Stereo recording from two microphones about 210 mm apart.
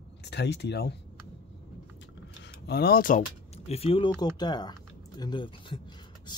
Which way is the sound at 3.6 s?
30° left (ahead or behind).